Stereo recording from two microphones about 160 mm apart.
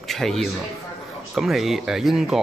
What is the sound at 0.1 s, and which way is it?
A man's voice, centre (ahead or behind).